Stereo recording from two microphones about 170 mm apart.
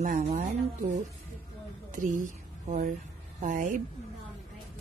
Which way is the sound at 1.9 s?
50° right (ahead or behind).